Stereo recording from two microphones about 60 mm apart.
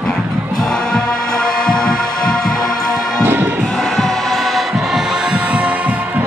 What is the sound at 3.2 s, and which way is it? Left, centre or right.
Music, right.